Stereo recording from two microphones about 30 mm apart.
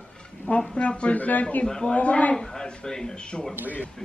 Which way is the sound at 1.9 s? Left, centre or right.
Left.